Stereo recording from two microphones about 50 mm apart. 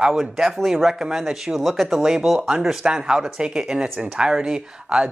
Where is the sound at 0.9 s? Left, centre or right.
Centre.